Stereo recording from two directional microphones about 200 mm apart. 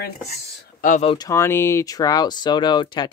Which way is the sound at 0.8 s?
35° left (ahead or behind).